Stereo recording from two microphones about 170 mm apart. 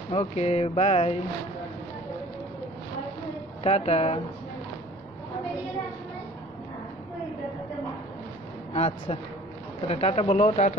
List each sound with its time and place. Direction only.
0.1 s speech: 40° left (ahead or behind)
3.6 s speech: 40° left (ahead or behind)
8.7 s speech: 35° left (ahead or behind)